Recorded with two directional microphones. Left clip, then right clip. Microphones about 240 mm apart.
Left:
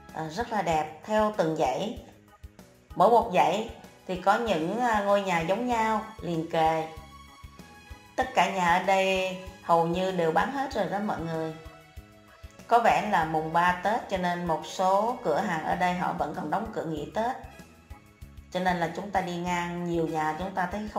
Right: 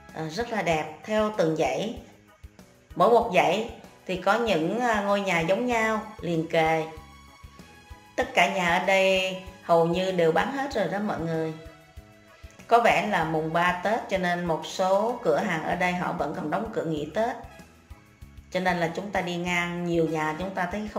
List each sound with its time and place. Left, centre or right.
0.1 s a woman's voice: centre
3.0 s a woman's voice: centre
8.2 s a woman's voice: centre
12.6 s a woman's voice: centre
18.5 s a woman's voice: centre